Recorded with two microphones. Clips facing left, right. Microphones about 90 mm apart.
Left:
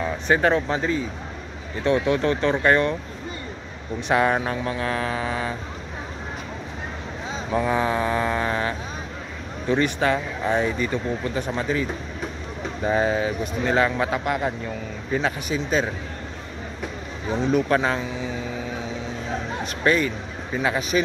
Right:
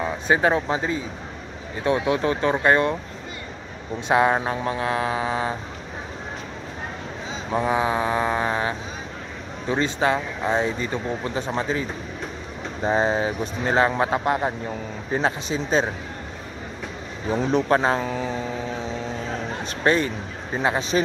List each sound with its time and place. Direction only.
0.0 s speech: 20° right (ahead or behind)
4.1 s speech: 20° right (ahead or behind)
7.5 s speech: 20° right (ahead or behind)
12.8 s speech: 30° right (ahead or behind)
17.4 s speech: 30° right (ahead or behind)
18.0 s speech: 45° right (ahead or behind)
19.6 s speech: 35° right (ahead or behind)